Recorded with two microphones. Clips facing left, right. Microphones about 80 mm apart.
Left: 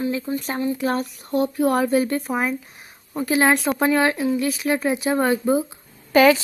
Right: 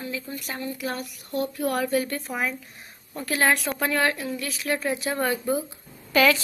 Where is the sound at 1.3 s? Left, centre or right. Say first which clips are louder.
Left 6 dB; left.